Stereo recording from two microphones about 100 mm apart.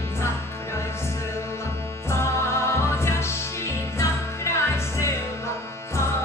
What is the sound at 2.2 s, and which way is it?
Music, 25° left (ahead or behind).